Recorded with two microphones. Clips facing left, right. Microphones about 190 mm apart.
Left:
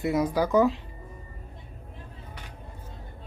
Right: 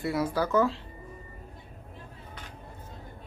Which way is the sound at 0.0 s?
20° left (ahead or behind).